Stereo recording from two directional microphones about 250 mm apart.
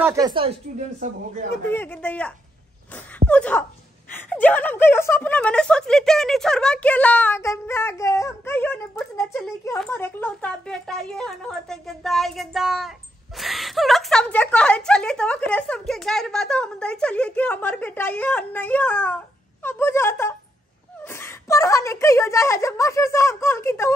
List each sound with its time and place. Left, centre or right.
0.0 s speech: centre; by 1.2 s right
1.7 s a woman's voice: centre